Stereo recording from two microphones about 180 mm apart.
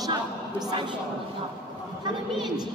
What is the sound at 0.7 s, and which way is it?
Speech, 25° right (ahead or behind).